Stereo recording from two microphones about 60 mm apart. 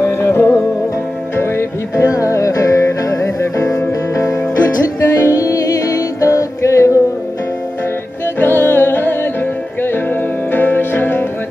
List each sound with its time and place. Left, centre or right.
0.0 s music: left
2.0 s music: left
5.0 s music: left
5.4 s music: left
8.4 s music: left
10.5 s music: left